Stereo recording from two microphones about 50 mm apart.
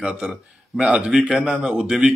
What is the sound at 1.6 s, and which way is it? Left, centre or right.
Speech, centre.